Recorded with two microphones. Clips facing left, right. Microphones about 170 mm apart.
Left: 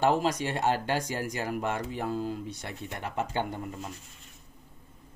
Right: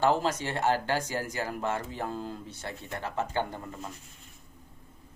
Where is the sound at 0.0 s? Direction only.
15° left (ahead or behind).